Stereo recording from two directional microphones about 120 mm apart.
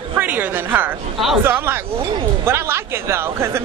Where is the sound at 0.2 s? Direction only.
15° right (ahead or behind).